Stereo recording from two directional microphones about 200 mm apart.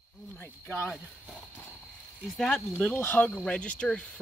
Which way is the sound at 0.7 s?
Centre (ahead or behind).